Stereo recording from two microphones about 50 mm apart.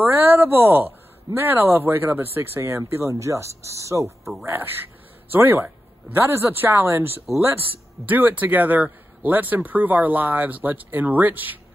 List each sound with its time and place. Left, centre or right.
0.0 s speech: right
5.3 s speech: right